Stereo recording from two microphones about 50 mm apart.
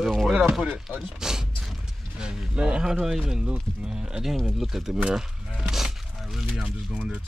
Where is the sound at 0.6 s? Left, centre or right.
Right.